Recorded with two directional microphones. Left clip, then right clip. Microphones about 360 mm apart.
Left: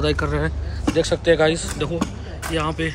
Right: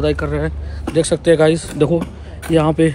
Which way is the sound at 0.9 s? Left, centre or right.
Centre.